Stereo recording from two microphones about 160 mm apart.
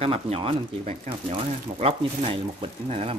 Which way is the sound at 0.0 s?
35° right (ahead or behind).